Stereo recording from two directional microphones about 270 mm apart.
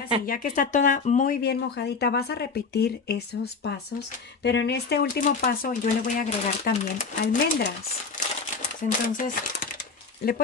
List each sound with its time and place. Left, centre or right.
0.3 s speech: left
4.4 s speech: left
8.8 s speech: left